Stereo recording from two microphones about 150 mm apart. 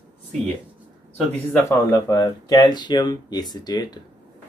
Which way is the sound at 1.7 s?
20° left (ahead or behind).